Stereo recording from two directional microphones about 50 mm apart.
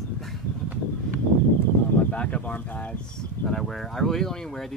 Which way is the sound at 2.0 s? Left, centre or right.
Left.